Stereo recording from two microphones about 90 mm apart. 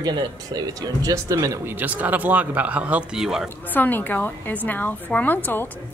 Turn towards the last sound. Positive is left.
turn(degrees=20)  # may be behind; listen again after turning